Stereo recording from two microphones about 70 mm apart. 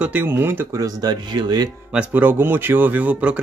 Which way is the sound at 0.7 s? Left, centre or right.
Right.